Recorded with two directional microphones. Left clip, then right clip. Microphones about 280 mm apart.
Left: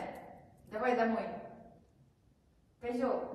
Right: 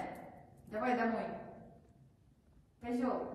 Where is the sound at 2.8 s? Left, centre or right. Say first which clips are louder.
Left 3 dB; centre.